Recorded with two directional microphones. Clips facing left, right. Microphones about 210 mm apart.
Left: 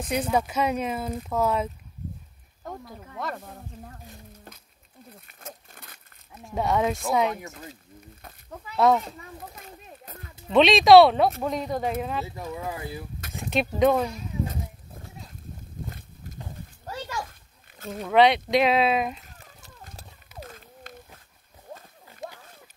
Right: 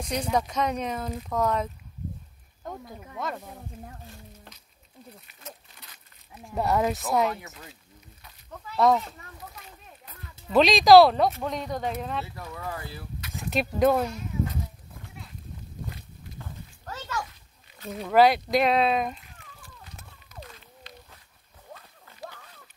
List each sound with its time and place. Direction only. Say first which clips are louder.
0.0 s speech: left 2 dB; 5° left (ahead or behind)
5.2 s pig: left 2 dB; 50° left (ahead or behind)
6.4 s speech: left 1 dB; centre (ahead or behind)
8.7 s speech: left 1 dB; centre (ahead or behind)
9.5 s a sound: left 4 dB; 45° left (ahead or behind)
10.5 s speech: left 1 dB; centre (ahead or behind)
12.4 s speech: left 3 dB; 20° left (ahead or behind)
13.3 s speech: left 2 dB; centre (ahead or behind)
16.3 s a sound: left 2 dB; 10° left (ahead or behind)
17.3 s a sound: left 1 dB; 50° left (ahead or behind)
18.0 s speech: even; centre (ahead or behind)
20.4 s a sound: left 4 dB; 45° left (ahead or behind)